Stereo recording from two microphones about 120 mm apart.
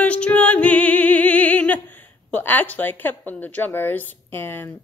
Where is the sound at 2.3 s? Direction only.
15° left (ahead or behind).